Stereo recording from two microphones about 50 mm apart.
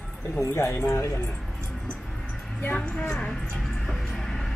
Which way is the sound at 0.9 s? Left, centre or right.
Left.